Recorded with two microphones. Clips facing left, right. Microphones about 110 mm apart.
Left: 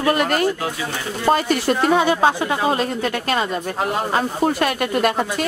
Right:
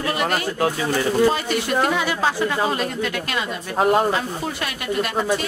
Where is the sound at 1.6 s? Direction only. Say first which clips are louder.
Left 5 dB; 35° left (ahead or behind); by 5.1 s 50° left (ahead or behind).